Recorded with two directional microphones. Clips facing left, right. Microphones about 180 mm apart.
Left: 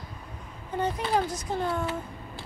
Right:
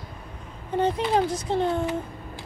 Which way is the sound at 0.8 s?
25° right (ahead or behind).